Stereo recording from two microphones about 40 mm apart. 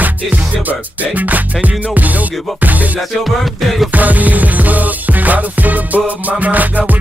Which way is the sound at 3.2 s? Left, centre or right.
Centre.